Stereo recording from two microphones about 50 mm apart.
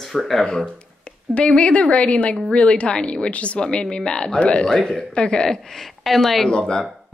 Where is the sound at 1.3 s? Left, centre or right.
Left.